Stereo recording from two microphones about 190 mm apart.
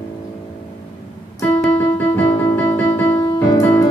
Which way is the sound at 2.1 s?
10° left (ahead or behind).